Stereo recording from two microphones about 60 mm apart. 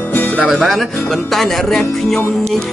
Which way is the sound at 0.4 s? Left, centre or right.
Centre.